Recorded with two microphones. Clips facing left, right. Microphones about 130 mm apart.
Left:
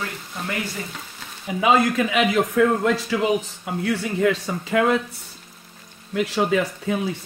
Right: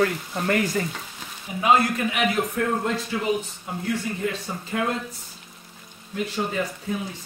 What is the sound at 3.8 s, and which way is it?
Speech, 90° left.